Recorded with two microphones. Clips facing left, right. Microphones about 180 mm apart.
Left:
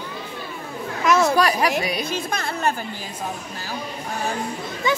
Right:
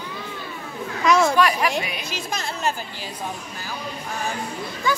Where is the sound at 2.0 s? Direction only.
55° left (ahead or behind).